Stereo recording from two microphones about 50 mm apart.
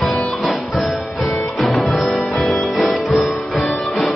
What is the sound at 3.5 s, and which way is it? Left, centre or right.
Music, left.